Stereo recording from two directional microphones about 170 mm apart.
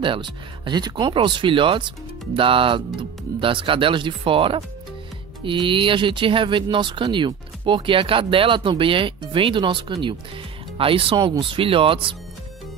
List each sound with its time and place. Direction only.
0.0 s speech: 30° right (ahead or behind)